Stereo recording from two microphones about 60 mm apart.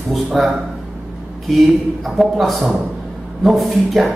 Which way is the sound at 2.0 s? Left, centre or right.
Centre.